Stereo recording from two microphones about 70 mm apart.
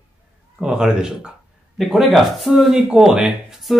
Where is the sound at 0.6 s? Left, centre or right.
Centre.